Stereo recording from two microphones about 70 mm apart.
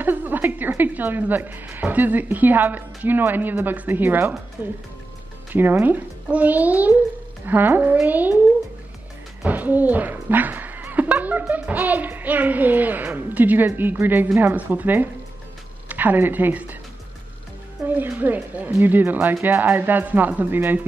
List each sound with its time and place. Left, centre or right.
0.0 s a woman's voice: right
9.5 s a woman's voice: right
17.8 s a woman's voice: right